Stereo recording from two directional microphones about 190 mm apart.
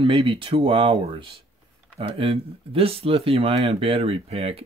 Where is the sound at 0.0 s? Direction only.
30° right (ahead or behind).